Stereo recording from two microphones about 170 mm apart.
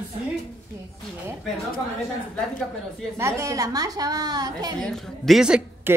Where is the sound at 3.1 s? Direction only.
15° right (ahead or behind).